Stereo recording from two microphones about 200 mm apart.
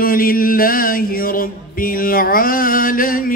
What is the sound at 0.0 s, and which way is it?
Mantra, 45° left (ahead or behind).